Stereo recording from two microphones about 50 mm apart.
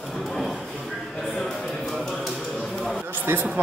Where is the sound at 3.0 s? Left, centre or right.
Right.